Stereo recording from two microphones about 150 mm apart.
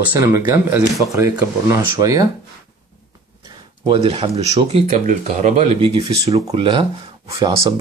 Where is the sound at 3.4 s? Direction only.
25° right (ahead or behind).